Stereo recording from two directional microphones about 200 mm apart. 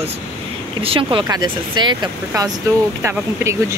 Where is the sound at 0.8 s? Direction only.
25° right (ahead or behind).